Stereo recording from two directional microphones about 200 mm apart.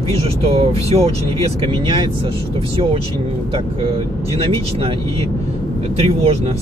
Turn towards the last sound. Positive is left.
turn(degrees=-30)  # may be behind; listen again after turning